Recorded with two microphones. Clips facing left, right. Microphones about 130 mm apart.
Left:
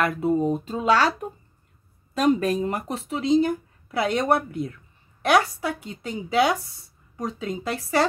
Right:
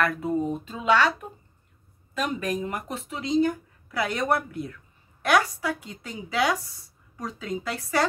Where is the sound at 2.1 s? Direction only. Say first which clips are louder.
Left 7 dB; 40° left (ahead or behind).